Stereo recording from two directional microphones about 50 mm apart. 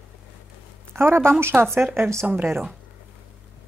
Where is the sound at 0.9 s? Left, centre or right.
Right.